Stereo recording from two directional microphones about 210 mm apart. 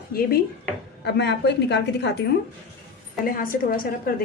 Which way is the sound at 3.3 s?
45° left (ahead or behind).